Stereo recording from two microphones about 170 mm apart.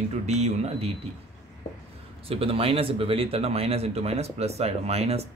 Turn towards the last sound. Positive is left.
turn(degrees=-35)  # may be behind; listen again after turning